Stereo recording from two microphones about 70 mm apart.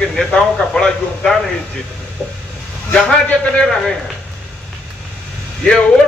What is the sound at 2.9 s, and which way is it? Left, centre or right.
Speech, centre.